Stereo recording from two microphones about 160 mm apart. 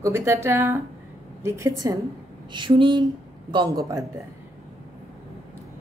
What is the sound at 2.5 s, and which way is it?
Speech, 30° right (ahead or behind).